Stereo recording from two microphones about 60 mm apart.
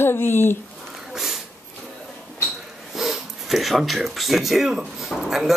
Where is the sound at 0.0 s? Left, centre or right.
Left.